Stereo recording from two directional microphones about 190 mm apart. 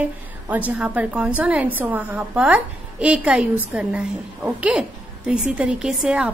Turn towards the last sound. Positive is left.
turn(degrees=-5)  # may be behind; listen again after turning